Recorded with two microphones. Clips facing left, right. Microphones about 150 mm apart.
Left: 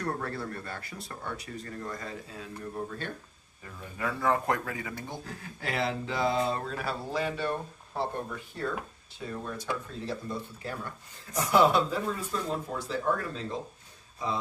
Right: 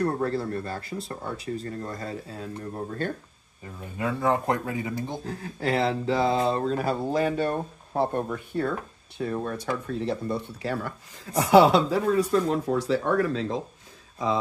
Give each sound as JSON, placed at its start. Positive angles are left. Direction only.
{"t": 0.0, "sound": "speech", "side_deg": -30}
{"t": 3.6, "sound": "speech", "side_deg": -25}
{"t": 5.2, "sound": "speech", "side_deg": -40}
{"t": 11.3, "sound": "speech", "side_deg": -90}